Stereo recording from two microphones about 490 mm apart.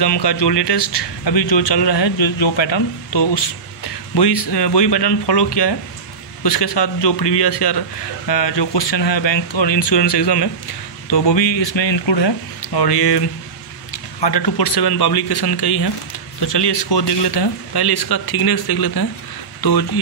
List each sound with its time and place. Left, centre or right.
0.0 s speech: left
14.2 s speech: left